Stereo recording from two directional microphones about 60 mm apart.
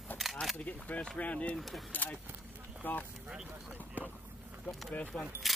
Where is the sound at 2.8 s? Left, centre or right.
Left.